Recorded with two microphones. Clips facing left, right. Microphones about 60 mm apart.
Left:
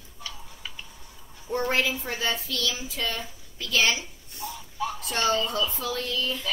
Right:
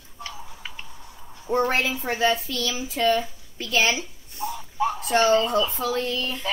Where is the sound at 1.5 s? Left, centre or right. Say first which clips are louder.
Right 3 dB; right.